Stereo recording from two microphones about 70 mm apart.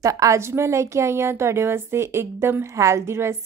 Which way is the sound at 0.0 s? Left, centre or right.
Right.